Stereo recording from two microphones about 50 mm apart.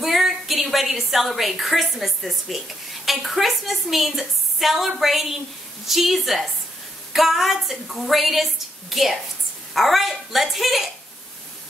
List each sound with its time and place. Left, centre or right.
0.0 s a woman's voice: centre
9.8 s a woman's voice: centre